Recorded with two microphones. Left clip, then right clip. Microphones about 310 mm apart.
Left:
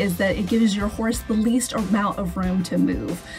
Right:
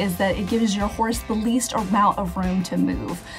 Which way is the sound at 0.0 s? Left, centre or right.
Centre.